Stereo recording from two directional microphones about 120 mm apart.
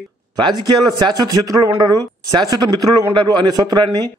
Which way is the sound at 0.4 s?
35° right (ahead or behind).